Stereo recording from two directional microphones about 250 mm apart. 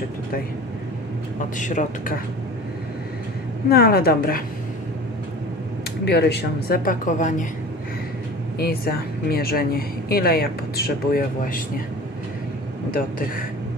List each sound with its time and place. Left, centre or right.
1.6 s a woman's voice: left
3.6 s a woman's voice: left
6.0 s a woman's voice: left
8.5 s a woman's voice: left